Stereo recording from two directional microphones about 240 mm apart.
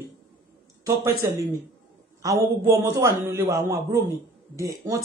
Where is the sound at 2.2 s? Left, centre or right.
Centre.